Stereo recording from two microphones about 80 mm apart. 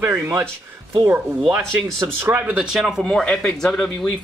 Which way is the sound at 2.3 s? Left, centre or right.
Centre.